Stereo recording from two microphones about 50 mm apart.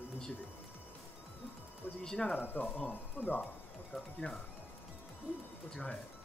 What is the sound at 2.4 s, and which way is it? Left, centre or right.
Speech, left.